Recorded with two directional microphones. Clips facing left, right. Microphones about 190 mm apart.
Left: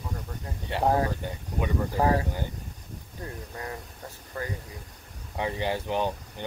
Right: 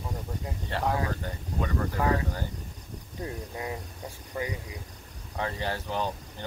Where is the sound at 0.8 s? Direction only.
40° left (ahead or behind).